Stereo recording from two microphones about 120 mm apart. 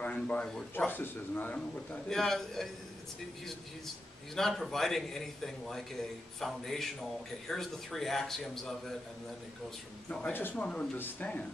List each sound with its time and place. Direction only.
0.0 s a sound: 10° left (ahead or behind)
0.7 s speech: 15° left (ahead or behind)
2.0 s a man's voice: 5° left (ahead or behind)
4.4 s a man's voice: centre (ahead or behind)
10.0 s speech: 10° left (ahead or behind)